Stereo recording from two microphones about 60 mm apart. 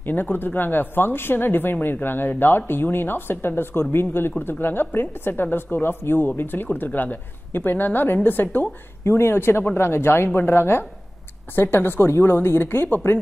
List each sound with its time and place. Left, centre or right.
0.0 s a woman's voice: left
9.0 s a woman's voice: left